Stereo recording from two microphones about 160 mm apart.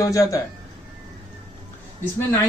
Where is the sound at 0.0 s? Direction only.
20° left (ahead or behind).